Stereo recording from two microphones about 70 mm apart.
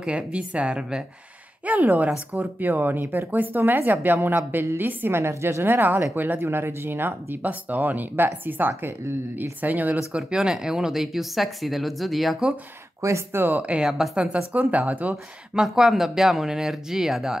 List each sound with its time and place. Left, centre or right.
0.0 s a woman's voice: centre
1.7 s speech: right
10.1 s speech: centre
13.0 s speech: right
13.4 s speech: right
13.7 s a woman's voice: centre
15.6 s speech: centre